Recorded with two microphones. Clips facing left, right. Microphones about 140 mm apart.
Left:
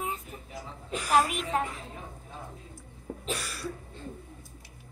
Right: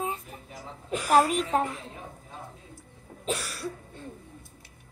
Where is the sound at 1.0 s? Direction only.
35° right (ahead or behind).